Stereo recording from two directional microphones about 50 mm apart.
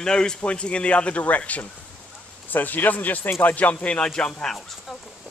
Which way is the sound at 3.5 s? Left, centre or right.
Left.